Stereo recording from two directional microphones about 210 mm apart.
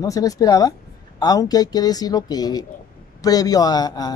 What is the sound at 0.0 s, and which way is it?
Speech, 15° left (ahead or behind).